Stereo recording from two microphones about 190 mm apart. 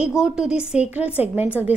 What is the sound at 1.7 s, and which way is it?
Speech, 35° left (ahead or behind).